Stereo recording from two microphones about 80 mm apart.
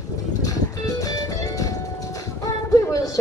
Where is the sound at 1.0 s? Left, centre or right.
Left.